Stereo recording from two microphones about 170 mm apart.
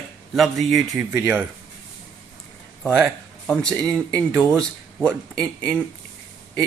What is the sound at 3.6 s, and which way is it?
A man's voice, 20° right (ahead or behind).